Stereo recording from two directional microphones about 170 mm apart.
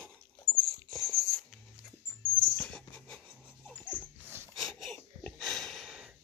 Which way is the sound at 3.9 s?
25° right (ahead or behind).